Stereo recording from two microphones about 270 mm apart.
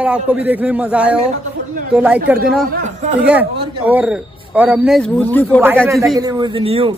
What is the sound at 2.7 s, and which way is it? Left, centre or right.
Speech, right.